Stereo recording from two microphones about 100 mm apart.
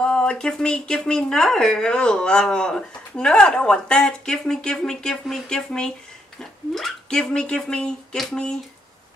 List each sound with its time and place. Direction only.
0.0 s speech: 10° left (ahead or behind)